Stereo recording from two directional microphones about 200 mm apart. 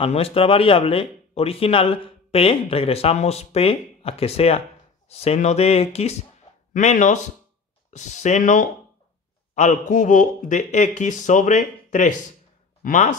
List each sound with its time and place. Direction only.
0.0 s speech: 30° left (ahead or behind)